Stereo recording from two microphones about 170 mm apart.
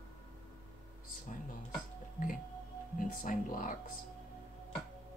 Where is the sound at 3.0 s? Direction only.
50° left (ahead or behind).